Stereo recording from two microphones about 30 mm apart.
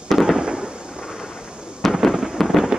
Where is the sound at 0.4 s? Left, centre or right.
Right.